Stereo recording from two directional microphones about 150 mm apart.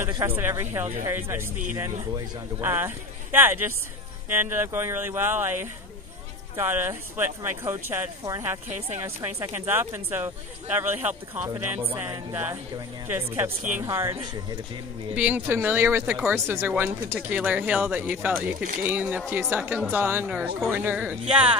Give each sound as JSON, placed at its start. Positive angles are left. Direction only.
{"t": 0.1, "sound": "speech", "side_deg": -15}
{"t": 15.1, "sound": "speech", "side_deg": -10}